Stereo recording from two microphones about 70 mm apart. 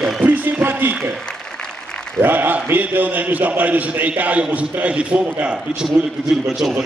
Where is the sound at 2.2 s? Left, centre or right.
Right.